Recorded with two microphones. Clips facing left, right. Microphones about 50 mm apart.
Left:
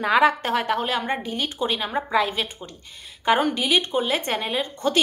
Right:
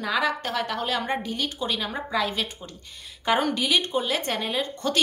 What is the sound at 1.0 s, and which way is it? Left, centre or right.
Speech, centre.